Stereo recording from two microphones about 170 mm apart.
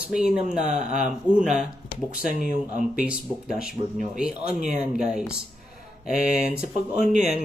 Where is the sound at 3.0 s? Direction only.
5° right (ahead or behind).